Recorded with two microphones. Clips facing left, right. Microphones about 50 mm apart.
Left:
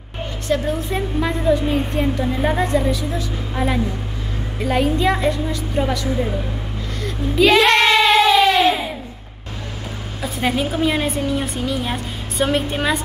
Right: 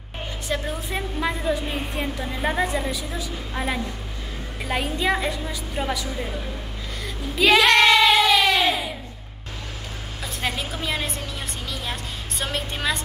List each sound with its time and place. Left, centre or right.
0.5 s a woman's voice: centre
7.0 s music: centre
7.5 s child singing: left
10.2 s a woman's voice: centre